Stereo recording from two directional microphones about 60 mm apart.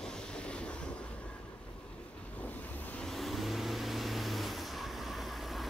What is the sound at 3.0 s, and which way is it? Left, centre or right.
Vehicle, centre.